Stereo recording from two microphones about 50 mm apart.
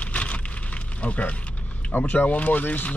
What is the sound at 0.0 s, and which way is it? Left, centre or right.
Speech, left.